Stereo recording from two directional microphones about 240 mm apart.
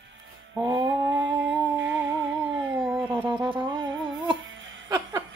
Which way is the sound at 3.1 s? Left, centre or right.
Centre.